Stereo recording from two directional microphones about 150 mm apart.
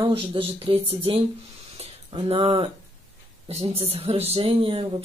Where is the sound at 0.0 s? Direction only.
40° right (ahead or behind).